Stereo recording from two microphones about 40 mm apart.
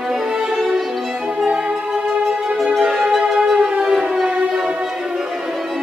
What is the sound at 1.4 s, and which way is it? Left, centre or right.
Music, right.